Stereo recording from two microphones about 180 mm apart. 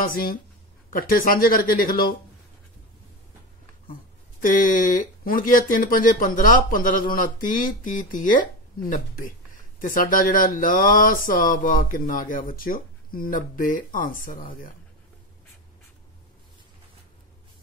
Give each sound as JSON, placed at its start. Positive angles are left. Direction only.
{"t": 0.0, "sound": "speech", "side_deg": 50}
{"t": 4.4, "sound": "speech", "side_deg": 45}